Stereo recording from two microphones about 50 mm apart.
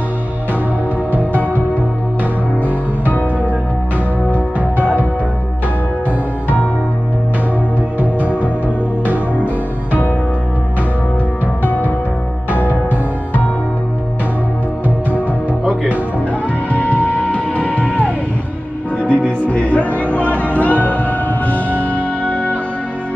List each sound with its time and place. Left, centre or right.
8.0 s music: right
11.6 s music: left
16.7 s music: left